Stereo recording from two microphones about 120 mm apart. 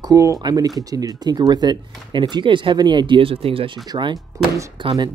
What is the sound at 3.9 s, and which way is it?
Speech, 40° right (ahead or behind).